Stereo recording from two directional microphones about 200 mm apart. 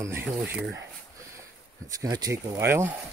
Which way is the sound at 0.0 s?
10° right (ahead or behind).